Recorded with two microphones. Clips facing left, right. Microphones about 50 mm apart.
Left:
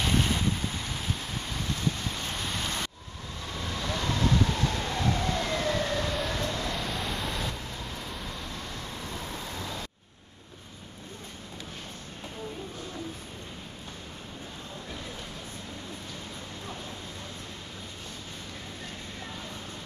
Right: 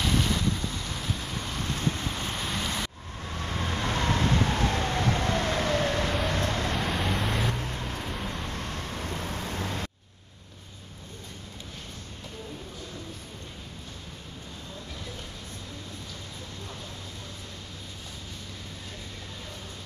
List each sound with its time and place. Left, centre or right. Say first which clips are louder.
0.0 s vehicle: even; centre
2.0 s boat: right 2 dB; centre
2.3 s rain: right 1 dB; centre
3.3 s vehicle: right 4 dB; right
6.8 s vehicle: right 4 dB; centre
7.5 s vehicle: right 5 dB; right
8.0 s vehicle: right 4 dB; centre
8.5 s vehicle: right 3 dB; right